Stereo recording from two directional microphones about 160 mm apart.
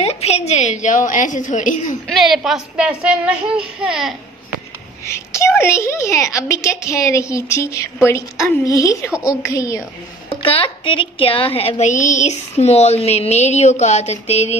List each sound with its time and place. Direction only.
0.0 s a woman's voice: 40° left (ahead or behind)
2.0 s speech: centre (ahead or behind)
5.1 s a woman's voice: 20° left (ahead or behind)
10.3 s a woman's voice: 35° left (ahead or behind)